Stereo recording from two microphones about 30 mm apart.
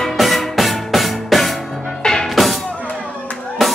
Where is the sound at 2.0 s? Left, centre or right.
Left.